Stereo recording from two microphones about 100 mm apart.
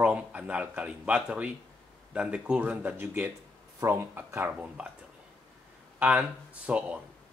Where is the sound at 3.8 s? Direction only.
30° right (ahead or behind).